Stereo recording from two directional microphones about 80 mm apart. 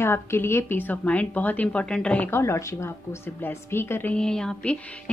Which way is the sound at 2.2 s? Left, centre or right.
Left.